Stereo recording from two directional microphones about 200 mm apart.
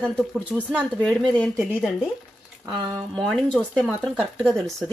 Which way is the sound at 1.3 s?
5° left (ahead or behind).